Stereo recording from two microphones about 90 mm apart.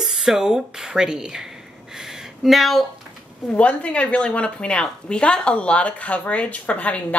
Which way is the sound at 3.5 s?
15° left (ahead or behind).